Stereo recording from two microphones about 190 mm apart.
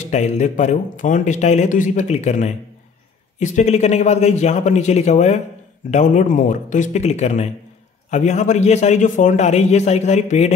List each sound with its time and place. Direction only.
0.0 s speech: 35° left (ahead or behind)